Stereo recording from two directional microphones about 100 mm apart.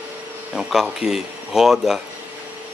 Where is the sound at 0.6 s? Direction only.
5° right (ahead or behind).